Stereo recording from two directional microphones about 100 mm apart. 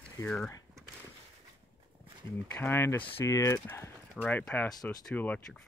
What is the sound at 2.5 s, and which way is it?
Speech, 20° left (ahead or behind).